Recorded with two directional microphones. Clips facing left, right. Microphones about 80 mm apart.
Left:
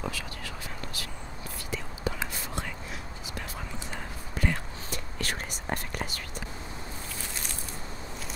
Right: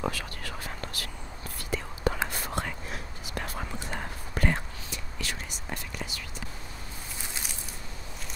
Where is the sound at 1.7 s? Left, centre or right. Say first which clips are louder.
Right 4 dB; right.